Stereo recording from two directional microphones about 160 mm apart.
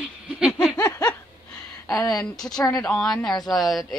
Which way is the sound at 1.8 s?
25° left (ahead or behind).